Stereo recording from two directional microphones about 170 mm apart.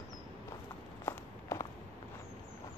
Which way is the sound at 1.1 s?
20° left (ahead or behind).